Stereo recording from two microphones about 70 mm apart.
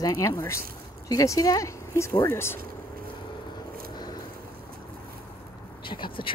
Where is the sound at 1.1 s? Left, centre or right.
Left.